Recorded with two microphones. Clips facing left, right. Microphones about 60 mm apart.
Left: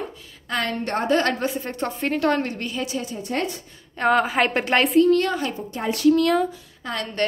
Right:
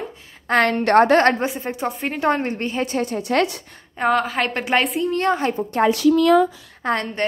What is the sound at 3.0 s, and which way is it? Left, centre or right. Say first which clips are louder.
Speech: right 9 dB; right.